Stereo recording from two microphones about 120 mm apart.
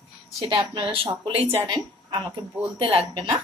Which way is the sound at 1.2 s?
55° right (ahead or behind).